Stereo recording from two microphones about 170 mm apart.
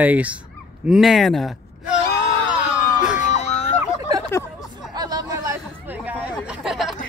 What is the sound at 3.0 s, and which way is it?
Emergency vehicle, 5° right (ahead or behind).